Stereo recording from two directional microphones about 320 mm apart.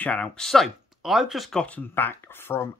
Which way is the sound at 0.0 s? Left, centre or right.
Centre.